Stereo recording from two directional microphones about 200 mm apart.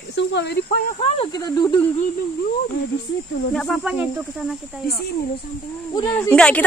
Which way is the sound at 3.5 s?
Centre (ahead or behind).